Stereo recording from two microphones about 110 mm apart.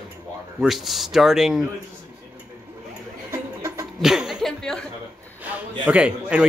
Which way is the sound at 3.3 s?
25° right (ahead or behind).